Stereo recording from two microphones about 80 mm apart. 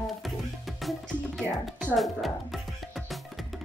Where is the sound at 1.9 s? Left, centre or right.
Centre.